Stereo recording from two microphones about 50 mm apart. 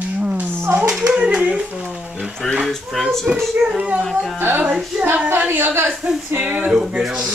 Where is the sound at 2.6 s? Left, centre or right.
Centre.